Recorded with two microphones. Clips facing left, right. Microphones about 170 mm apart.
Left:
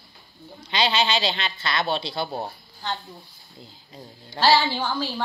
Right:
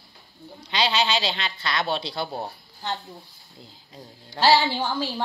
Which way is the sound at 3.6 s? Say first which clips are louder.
Left 1 dB; 5° left (ahead or behind).